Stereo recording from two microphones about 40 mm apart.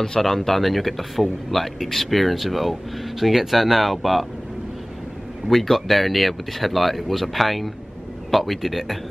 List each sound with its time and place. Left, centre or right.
0.2 s speech: centre
5.5 s speech: centre